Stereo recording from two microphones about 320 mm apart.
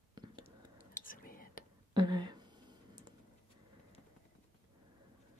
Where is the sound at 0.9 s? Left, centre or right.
Left.